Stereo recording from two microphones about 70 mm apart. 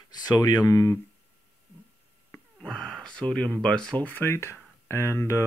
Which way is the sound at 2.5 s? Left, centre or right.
Centre.